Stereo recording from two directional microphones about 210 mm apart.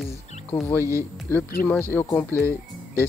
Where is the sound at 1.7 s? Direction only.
10° left (ahead or behind).